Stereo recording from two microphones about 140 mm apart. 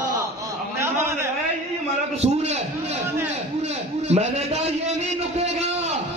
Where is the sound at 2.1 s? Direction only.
50° right (ahead or behind).